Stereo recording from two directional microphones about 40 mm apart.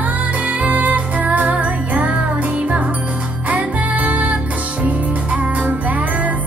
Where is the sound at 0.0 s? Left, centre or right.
Right.